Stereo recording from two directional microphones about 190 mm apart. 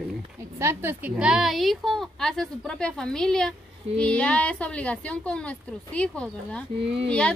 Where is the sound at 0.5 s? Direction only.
15° right (ahead or behind).